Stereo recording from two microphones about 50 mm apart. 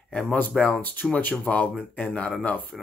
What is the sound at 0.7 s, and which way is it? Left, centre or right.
Speech, left.